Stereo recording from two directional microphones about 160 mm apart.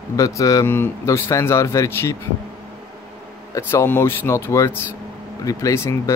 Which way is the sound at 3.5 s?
15° left (ahead or behind).